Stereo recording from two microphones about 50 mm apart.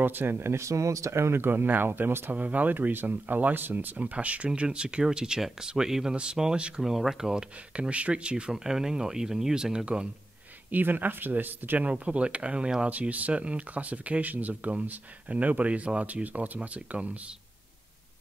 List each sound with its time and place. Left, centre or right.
0.0 s speech: right
2.3 s speech: right
4.5 s speech: centre
6.8 s speech: centre
7.9 s speech: right
10.7 s speech: right
11.9 s speech: right